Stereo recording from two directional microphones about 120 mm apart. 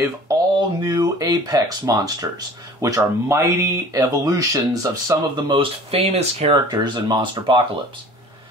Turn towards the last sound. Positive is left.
turn(degrees=-40)  # may be behind; listen again after turning